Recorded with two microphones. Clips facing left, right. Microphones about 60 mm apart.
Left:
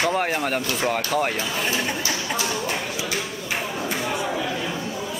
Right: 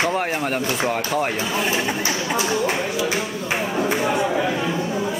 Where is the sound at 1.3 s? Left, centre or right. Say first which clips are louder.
Right 3 dB; right.